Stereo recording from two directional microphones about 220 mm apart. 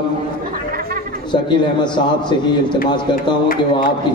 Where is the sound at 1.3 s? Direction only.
20° left (ahead or behind).